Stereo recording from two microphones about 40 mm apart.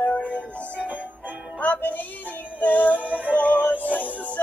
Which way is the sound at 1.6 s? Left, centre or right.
Left.